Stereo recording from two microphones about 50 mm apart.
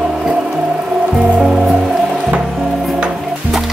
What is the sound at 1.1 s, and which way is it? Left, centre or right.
Music, centre.